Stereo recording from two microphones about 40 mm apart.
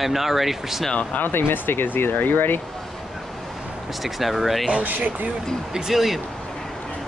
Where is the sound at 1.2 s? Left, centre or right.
Left.